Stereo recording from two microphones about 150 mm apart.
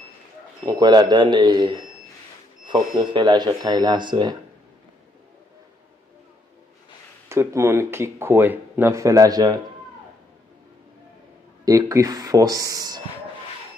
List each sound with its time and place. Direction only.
0.7 s speech: 30° right (ahead or behind)
3.1 s speech: 30° right (ahead or behind)
7.2 s speech: 20° right (ahead or behind)
11.6 s speech: 20° right (ahead or behind)